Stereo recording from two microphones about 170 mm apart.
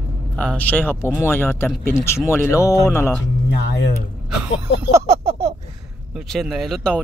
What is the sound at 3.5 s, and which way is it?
Speech, 90° left.